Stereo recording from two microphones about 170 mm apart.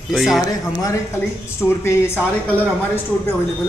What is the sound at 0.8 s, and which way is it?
Speech, 15° left (ahead or behind).